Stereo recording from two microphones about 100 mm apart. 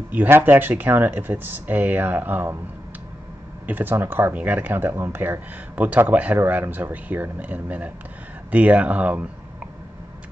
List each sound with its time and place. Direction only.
0.1 s speech: 20° right (ahead or behind)
3.6 s speech: 20° right (ahead or behind)